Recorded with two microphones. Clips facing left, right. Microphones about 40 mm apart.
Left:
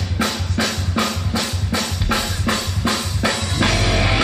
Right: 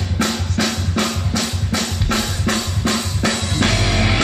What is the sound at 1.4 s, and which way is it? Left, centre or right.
Drum kit, centre.